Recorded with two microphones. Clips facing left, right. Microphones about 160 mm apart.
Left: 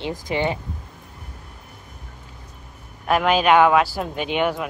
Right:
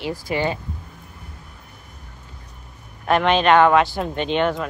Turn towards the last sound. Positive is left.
turn(degrees=10)  # may be behind; listen again after turning